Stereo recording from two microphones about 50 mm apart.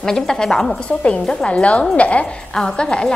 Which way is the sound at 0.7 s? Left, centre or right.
Left.